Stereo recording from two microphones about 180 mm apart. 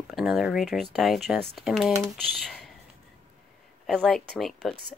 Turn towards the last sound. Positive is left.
turn(degrees=0)  # may be behind; listen again after turning